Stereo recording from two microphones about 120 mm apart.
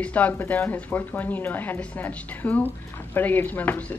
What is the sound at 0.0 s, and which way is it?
A woman's voice, 15° left (ahead or behind).